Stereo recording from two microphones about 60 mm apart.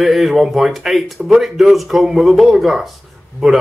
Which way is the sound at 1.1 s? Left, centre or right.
Centre.